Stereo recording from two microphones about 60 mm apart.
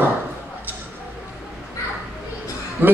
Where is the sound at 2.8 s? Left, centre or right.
Right.